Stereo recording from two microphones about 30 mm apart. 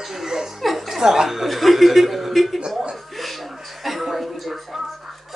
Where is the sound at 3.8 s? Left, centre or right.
Centre.